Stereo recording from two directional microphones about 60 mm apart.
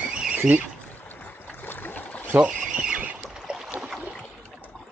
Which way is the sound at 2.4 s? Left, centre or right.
Centre.